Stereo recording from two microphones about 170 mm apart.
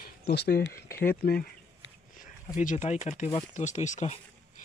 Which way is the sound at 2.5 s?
45° left (ahead or behind).